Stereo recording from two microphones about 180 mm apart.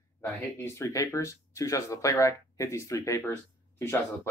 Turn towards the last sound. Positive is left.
turn(degrees=15)  # may be behind; listen again after turning